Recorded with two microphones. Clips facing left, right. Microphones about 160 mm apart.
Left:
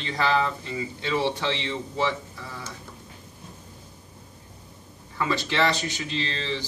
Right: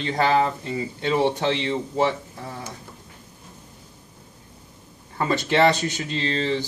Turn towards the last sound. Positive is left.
turn(degrees=-50)  # may be behind; listen again after turning